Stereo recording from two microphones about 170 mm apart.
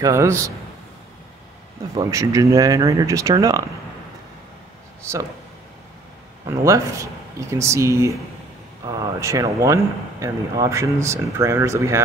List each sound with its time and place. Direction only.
0.0 s speech: 15° right (ahead or behind)
2.0 s speech: 20° right (ahead or behind)
6.4 s speech: 20° right (ahead or behind)